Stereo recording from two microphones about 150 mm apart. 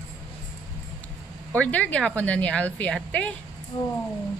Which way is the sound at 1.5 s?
10° left (ahead or behind).